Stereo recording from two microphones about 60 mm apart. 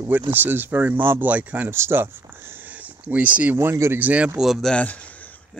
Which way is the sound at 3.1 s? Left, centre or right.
Right.